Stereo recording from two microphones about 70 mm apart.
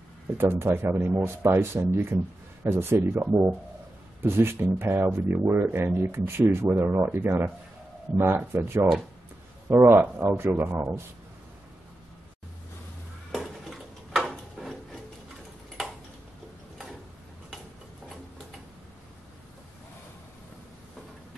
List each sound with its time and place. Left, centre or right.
0.4 s speech: right
8.5 s speech: right
13.3 s a sound: centre